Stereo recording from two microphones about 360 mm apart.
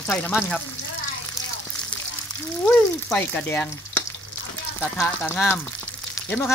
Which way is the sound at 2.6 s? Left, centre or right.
Centre.